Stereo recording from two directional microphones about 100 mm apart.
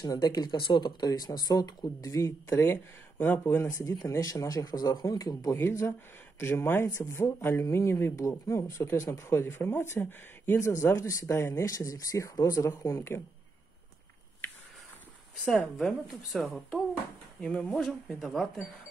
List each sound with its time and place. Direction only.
0.0 s speech: 40° left (ahead or behind); by 0.9 s 55° left (ahead or behind)
1.0 s speech: 40° left (ahead or behind)
2.6 s speech: 20° left (ahead or behind)
3.6 s speech: 35° left (ahead or behind)
5.6 s speech: 25° left (ahead or behind)
15.4 s a woman's voice: 5° left (ahead or behind)
17.8 s a woman's voice: centre (ahead or behind)